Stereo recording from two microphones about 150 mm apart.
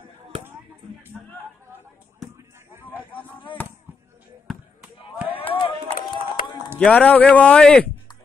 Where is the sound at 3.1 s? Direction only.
35° left (ahead or behind).